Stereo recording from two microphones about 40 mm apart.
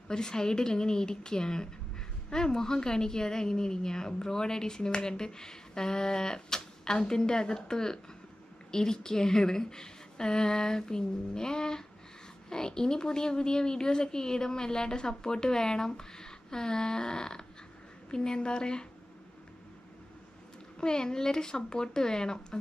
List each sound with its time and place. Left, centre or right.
0.1 s a woman's voice: centre
20.8 s a woman's voice: centre